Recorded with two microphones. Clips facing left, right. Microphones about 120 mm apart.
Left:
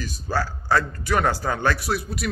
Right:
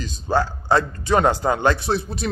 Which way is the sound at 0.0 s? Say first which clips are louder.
Right 5 dB; 20° right (ahead or behind).